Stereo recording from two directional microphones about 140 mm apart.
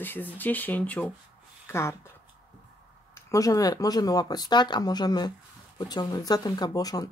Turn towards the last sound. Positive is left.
turn(degrees=25)  # may be behind; listen again after turning